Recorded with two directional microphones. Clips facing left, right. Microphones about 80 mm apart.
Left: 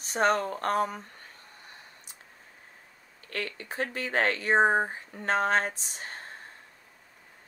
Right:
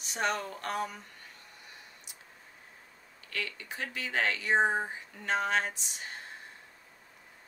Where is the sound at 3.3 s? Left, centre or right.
Left.